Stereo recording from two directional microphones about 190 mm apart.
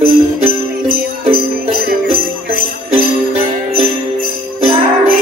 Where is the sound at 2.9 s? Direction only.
50° right (ahead or behind).